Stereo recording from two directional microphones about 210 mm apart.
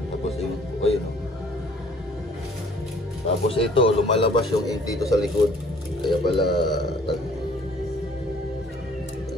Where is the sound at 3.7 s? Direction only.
25° left (ahead or behind).